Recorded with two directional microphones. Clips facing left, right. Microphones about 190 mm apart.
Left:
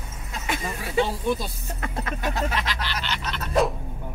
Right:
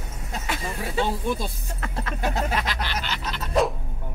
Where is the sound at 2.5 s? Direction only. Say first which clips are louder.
Right 1 dB; 45° right (ahead or behind).